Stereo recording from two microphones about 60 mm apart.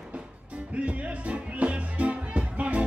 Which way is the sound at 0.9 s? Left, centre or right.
Right.